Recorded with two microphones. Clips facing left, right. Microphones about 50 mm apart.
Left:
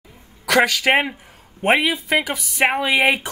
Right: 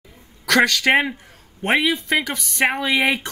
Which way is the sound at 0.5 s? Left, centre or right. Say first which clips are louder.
Even; centre.